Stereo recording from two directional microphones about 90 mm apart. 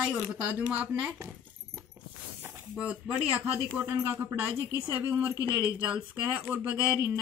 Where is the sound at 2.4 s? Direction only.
35° right (ahead or behind).